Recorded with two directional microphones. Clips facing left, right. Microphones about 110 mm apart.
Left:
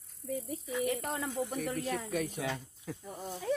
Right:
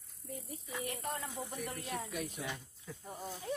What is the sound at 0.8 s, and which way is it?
Speech, 90° left.